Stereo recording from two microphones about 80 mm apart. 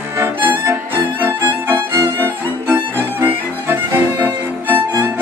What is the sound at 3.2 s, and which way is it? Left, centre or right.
Violin, right.